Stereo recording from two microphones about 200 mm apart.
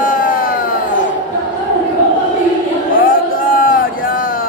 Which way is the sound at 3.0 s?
45° left (ahead or behind).